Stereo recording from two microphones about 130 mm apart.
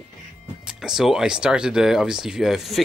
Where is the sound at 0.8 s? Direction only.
5° right (ahead or behind).